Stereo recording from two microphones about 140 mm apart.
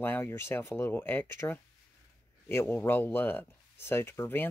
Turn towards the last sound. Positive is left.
turn(degrees=15)  # may be behind; listen again after turning